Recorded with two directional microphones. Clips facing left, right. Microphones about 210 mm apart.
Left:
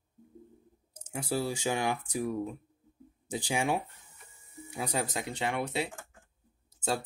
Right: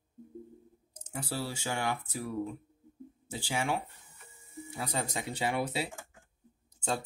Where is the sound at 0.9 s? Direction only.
10° left (ahead or behind).